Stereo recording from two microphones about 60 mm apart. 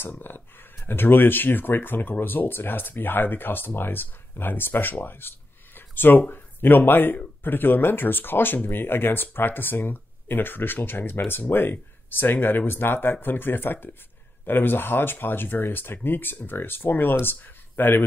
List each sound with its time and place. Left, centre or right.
0.0 s speech: left